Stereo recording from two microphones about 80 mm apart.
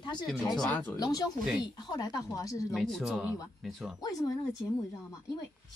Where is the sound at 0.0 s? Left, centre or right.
Left.